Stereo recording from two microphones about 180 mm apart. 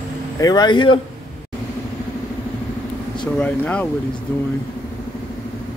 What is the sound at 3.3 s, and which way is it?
Speech, 5° left (ahead or behind).